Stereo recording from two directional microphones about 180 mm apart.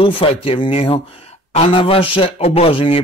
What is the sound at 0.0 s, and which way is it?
Speech, 30° left (ahead or behind).